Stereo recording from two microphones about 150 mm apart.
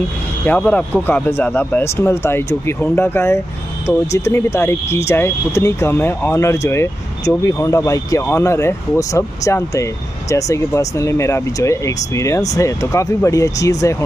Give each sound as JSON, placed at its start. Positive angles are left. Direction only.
{"t": 0.5, "sound": "speech", "side_deg": 10}